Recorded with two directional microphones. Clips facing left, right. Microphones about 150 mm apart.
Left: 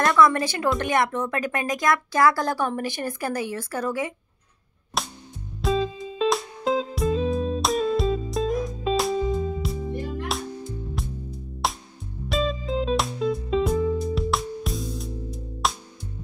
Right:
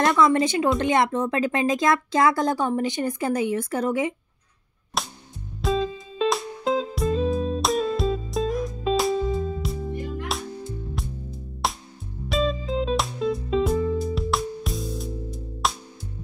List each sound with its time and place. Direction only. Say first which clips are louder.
0.0 s speech: even; 20° right (ahead or behind)
5.0 s music: even; centre (ahead or behind)
11.0 s music: left 1 dB; centre (ahead or behind)